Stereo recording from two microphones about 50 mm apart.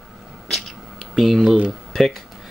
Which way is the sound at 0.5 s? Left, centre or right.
Centre.